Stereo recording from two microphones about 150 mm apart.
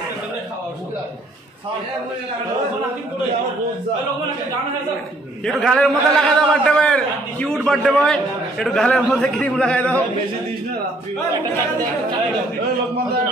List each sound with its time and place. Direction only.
5.4 s a man's voice: 5° left (ahead or behind)